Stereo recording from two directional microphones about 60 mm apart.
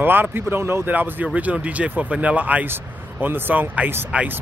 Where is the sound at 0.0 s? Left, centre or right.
Right.